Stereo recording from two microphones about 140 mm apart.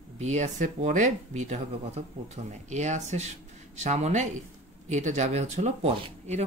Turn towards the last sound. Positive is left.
turn(degrees=-50)  # may be behind; listen again after turning